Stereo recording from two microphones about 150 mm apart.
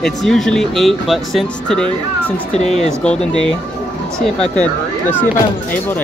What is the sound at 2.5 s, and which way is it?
Speech, 35° right (ahead or behind).